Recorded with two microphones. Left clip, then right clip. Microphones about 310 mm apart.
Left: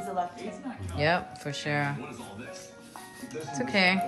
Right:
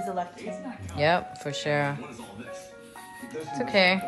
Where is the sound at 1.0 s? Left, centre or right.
Centre.